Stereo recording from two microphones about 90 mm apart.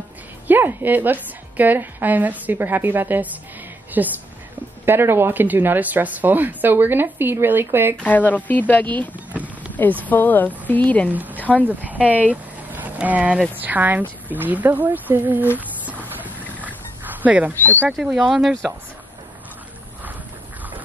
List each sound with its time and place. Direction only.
0.5 s speech: 25° right (ahead or behind)
8.0 s speech: 20° left (ahead or behind)
9.3 s clip-clop: 15° right (ahead or behind)
10.0 s speech: 20° left (ahead or behind)
11.1 s speech: 20° right (ahead or behind)
15.5 s a sound: 20° right (ahead or behind)
16.6 s dog: 20° right (ahead or behind)
17.9 s speech: 5° right (ahead or behind)